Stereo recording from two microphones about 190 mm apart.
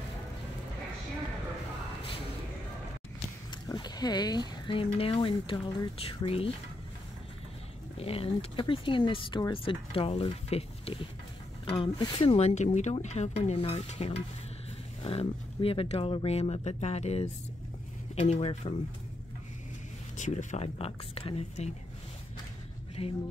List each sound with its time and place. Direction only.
3.6 s speech: 20° left (ahead or behind)
8.0 s speech: 30° left (ahead or behind)
20.2 s speech: 40° left (ahead or behind)
23.0 s speech: 30° left (ahead or behind)